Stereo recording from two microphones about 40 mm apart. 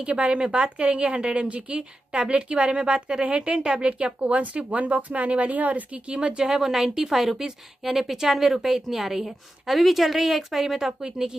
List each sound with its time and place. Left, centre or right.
0.0 s a woman's voice: right
6.1 s a woman's voice: right